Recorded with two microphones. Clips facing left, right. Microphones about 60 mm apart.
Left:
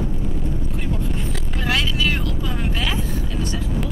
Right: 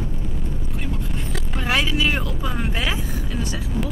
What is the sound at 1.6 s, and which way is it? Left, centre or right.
Vehicle, centre.